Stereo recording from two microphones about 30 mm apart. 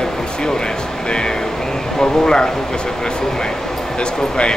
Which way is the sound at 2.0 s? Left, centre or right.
Left.